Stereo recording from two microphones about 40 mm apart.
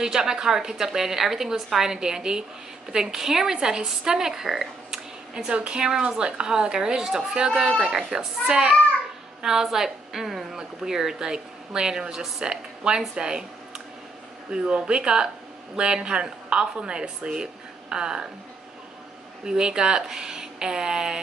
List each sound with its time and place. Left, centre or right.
0.0 s a woman's voice: centre
14.5 s speech: right
19.4 s a woman's voice: centre